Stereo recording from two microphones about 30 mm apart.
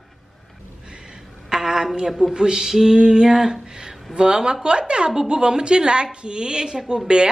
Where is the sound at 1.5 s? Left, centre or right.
Centre.